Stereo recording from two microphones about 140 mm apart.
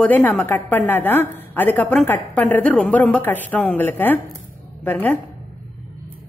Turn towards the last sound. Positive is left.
turn(degrees=15)  # may be behind; listen again after turning